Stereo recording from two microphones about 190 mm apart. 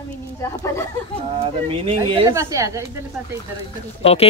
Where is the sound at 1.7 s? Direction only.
30° right (ahead or behind).